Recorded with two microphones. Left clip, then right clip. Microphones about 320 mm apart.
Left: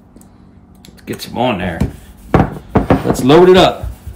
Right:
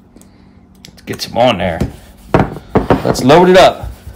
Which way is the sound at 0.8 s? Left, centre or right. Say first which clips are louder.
Right 3 dB; right.